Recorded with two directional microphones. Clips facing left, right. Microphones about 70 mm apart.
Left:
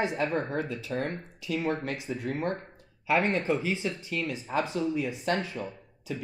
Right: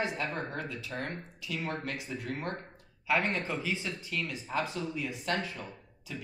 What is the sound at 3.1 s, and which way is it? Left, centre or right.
Speech, left.